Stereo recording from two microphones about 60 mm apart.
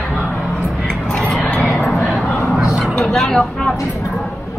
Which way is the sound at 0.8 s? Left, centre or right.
Centre.